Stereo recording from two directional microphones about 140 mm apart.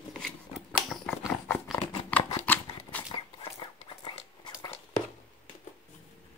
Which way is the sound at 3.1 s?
40° left (ahead or behind).